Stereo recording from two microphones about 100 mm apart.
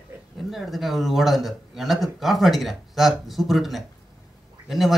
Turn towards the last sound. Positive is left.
turn(degrees=0)  # may be behind; listen again after turning